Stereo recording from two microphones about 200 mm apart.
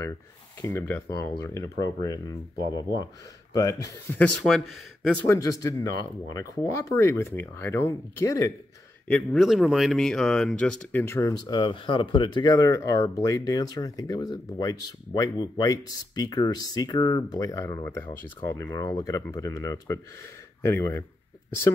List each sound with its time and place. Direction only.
0.6 s speech: 15° left (ahead or behind)
9.0 s speech: 5° left (ahead or behind)